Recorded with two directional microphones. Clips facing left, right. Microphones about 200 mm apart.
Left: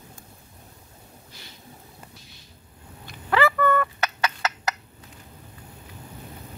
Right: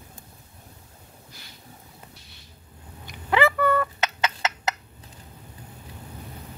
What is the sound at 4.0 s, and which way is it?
Turkey, 20° right (ahead or behind).